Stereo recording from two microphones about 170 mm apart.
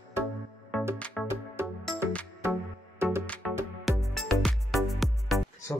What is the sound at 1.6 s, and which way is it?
Music, 15° right (ahead or behind).